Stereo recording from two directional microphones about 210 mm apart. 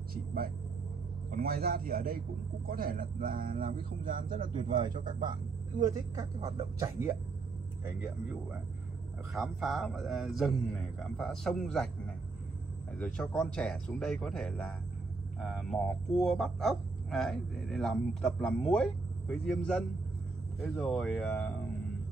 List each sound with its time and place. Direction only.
0.1 s vehicle: 45° right (ahead or behind)
1.3 s a man's voice: 45° right (ahead or behind)
4.4 s speech: 20° right (ahead or behind)
9.3 s speech: centre (ahead or behind)
12.9 s speech: 5° left (ahead or behind)